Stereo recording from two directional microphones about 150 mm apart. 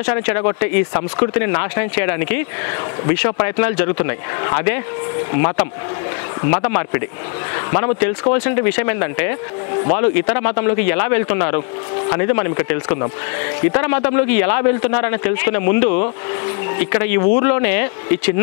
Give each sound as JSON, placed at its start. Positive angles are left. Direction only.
{"t": 0.0, "sound": "speech", "side_deg": 15}
{"t": 6.5, "sound": "speech", "side_deg": 15}